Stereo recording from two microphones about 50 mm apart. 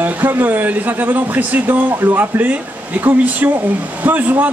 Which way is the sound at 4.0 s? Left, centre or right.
Right.